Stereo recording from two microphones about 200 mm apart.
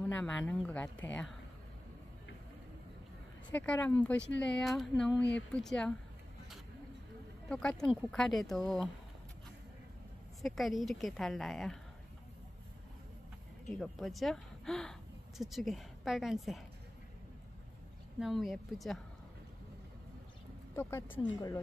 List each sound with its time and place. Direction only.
0.0 s speech: 5° left (ahead or behind)
3.5 s a woman's voice: 5° left (ahead or behind)
7.4 s a woman's voice: 5° left (ahead or behind)
10.4 s a woman's voice: centre (ahead or behind)
13.7 s a woman's voice: centre (ahead or behind)
18.2 s a woman's voice: centre (ahead or behind)
20.7 s a woman's voice: 10° left (ahead or behind)